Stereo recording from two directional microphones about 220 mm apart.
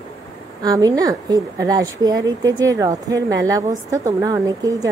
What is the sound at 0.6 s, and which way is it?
A woman's voice, 15° right (ahead or behind).